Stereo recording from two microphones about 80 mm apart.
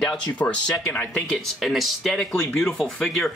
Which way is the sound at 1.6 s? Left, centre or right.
Centre.